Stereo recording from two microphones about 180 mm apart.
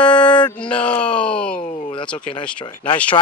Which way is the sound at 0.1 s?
25° left (ahead or behind).